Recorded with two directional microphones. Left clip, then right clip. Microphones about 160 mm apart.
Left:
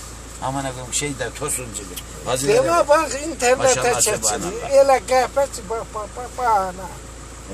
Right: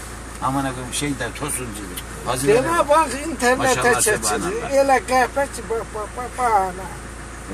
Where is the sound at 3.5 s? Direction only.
20° left (ahead or behind).